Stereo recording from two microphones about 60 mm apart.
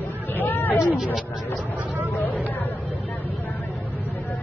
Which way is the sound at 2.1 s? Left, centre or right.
Left.